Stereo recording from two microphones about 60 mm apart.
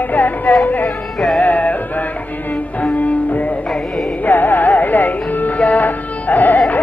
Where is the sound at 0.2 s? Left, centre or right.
Left.